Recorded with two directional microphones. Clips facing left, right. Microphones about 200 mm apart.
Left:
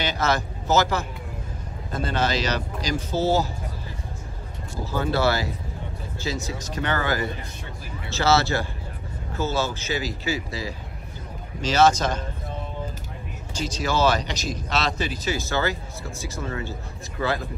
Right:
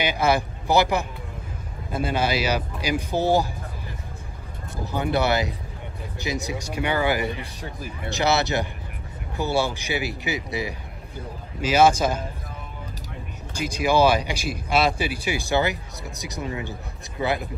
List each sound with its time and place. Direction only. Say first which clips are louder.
0.0 s speech: right 3 dB; 10° right (ahead or behind)
4.9 s speech: right 1 dB; 20° right (ahead or behind)
13.6 s speech: right 4 dB; 10° right (ahead or behind)